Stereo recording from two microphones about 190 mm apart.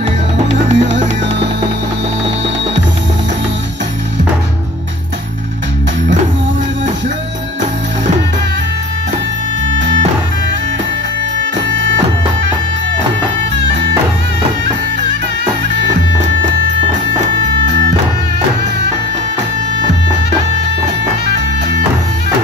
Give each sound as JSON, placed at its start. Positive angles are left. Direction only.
{"t": 0.5, "sound": "music", "side_deg": -35}
{"t": 11.6, "sound": "music", "side_deg": -75}
{"t": 17.6, "sound": "music", "side_deg": -65}
{"t": 21.4, "sound": "music", "side_deg": -65}